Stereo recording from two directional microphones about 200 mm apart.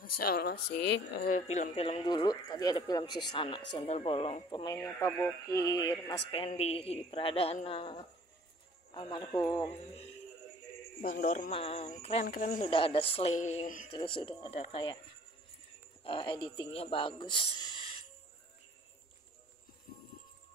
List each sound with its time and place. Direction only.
0.0 s speech: 50° left (ahead or behind)
1.3 s speech: 35° left (ahead or behind); by 9.7 s 15° left (ahead or behind)
9.7 s speech: 30° left (ahead or behind)
11.0 s speech: 45° left (ahead or behind)
11.5 s speech: 30° left (ahead or behind)
13.9 s speech: 25° left (ahead or behind)
16.0 s speech: 25° left (ahead or behind)